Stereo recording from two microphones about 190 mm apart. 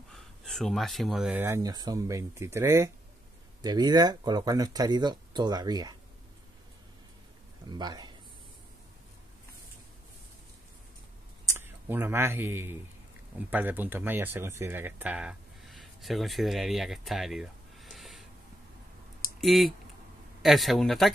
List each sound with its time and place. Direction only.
0.1 s speech: 5° left (ahead or behind); by 5.9 s 20° right (ahead or behind)
7.7 s speech: 20° right (ahead or behind)
11.5 s speech: 10° right (ahead or behind)
19.4 s speech: centre (ahead or behind)